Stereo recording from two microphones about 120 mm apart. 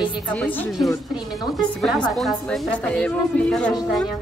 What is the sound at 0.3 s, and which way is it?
Speech, 15° left (ahead or behind).